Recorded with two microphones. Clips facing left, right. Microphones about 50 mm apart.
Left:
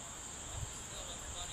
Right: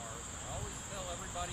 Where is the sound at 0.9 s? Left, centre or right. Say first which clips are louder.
Right 9 dB; right.